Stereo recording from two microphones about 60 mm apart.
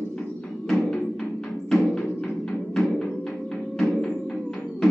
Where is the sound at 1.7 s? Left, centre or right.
Centre.